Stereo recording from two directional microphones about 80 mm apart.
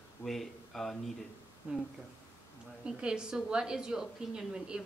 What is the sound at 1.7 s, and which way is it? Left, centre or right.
Speech, centre.